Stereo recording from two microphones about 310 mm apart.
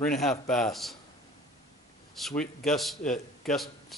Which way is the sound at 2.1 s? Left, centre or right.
Centre.